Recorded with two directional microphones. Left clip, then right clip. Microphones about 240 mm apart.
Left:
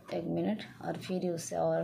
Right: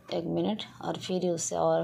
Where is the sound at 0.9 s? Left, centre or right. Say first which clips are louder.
Right 5 dB; centre.